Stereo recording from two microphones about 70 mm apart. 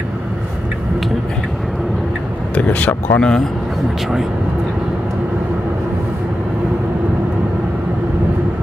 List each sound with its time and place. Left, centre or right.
2.5 s speech: left
3.2 s speech: centre